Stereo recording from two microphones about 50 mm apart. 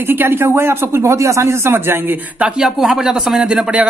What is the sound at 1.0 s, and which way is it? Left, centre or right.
Speech, right.